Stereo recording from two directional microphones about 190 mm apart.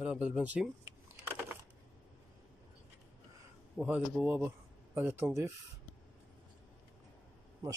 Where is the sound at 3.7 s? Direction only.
5° right (ahead or behind).